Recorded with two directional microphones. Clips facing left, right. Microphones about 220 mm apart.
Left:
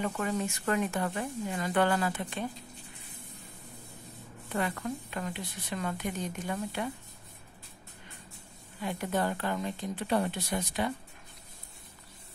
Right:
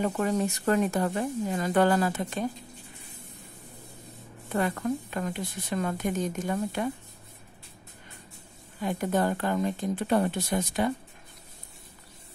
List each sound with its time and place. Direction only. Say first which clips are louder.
0.0 s speech: right 5 dB; 40° right (ahead or behind)
4.6 s a woman's voice: right 5 dB; 45° right (ahead or behind)
8.8 s a woman's voice: right 5 dB; 45° right (ahead or behind)